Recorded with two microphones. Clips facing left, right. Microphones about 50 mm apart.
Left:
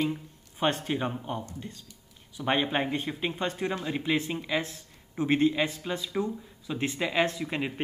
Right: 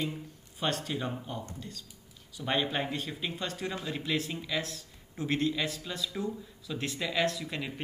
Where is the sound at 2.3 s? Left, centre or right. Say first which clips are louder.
Left 4 dB; left.